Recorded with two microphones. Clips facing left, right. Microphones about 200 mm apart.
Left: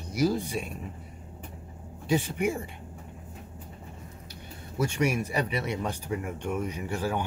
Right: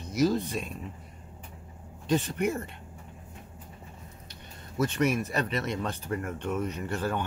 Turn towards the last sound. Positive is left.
turn(degrees=10)  # may be behind; listen again after turning